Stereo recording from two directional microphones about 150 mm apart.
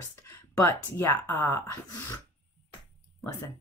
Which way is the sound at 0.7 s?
15° left (ahead or behind).